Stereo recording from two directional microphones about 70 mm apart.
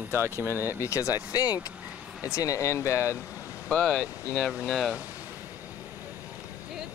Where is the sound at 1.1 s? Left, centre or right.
Left.